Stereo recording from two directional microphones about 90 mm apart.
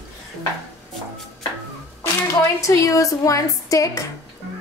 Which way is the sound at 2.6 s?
40° left (ahead or behind).